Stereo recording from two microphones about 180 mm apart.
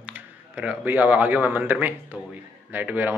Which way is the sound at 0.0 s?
10° right (ahead or behind).